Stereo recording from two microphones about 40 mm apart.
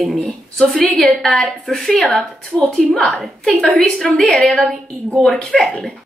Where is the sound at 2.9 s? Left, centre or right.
Left.